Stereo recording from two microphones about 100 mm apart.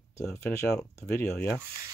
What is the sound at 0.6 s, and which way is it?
Speech, 10° left (ahead or behind).